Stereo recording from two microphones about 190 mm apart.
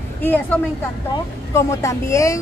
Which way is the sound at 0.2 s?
10° left (ahead or behind).